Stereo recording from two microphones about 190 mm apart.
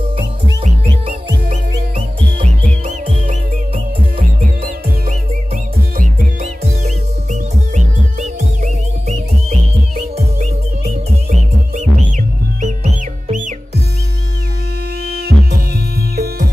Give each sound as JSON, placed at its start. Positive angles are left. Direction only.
{"t": 2.3, "sound": "music", "side_deg": -35}
{"t": 5.9, "sound": "music", "side_deg": -40}
{"t": 10.1, "sound": "music", "side_deg": -35}
{"t": 15.0, "sound": "music", "side_deg": -60}